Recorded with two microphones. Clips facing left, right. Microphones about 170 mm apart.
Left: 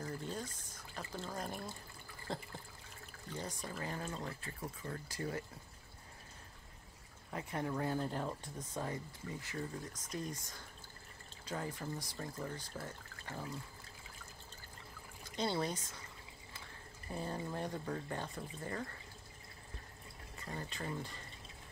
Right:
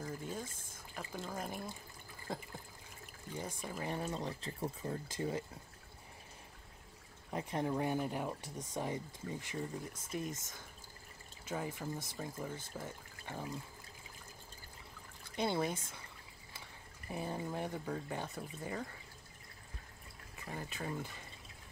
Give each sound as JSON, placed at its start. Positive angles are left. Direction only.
{"t": 0.0, "sound": "a sound", "side_deg": -10}
{"t": 0.5, "sound": "speech", "side_deg": -50}
{"t": 0.9, "sound": "speech", "side_deg": -10}
{"t": 4.4, "sound": "speech", "side_deg": -25}
{"t": 7.2, "sound": "speech", "side_deg": -20}
{"t": 11.5, "sound": "speech", "side_deg": -10}
{"t": 15.3, "sound": "speech", "side_deg": -15}
{"t": 17.1, "sound": "speech", "side_deg": -15}
{"t": 20.3, "sound": "speech", "side_deg": -10}